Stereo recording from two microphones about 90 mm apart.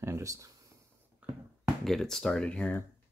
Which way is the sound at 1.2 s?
15° right (ahead or behind).